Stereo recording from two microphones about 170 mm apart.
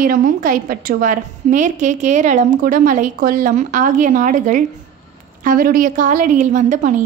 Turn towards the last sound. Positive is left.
turn(degrees=-45)  # may be behind; listen again after turning